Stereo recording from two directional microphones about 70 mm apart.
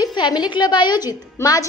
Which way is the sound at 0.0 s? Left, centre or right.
Left.